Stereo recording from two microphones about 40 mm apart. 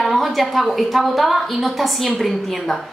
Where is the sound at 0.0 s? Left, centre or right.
Centre.